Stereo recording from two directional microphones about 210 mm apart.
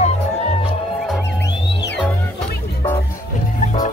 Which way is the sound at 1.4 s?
55° left (ahead or behind).